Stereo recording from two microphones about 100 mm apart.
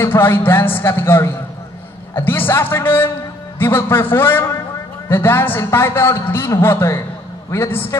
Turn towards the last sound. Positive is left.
turn(degrees=25)  # may be behind; listen again after turning